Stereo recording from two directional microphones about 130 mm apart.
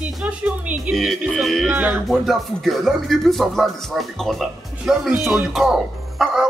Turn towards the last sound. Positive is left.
turn(degrees=-5)  # may be behind; listen again after turning